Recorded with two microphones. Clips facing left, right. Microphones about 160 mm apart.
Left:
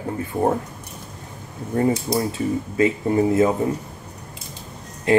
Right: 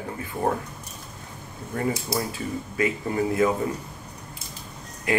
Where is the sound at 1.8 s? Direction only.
25° left (ahead or behind).